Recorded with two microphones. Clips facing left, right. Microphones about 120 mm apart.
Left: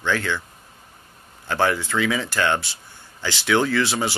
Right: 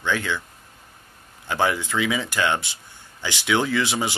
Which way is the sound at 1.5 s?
10° right (ahead or behind).